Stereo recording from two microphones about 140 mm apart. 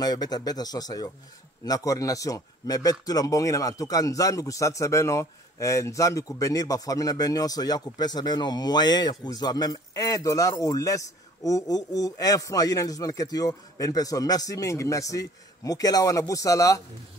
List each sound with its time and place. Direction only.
0.0 s speech: 30° left (ahead or behind)